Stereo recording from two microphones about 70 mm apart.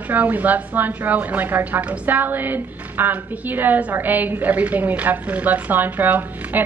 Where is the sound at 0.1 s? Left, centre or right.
Right.